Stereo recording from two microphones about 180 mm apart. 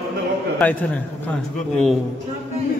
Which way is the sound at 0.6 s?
10° left (ahead or behind).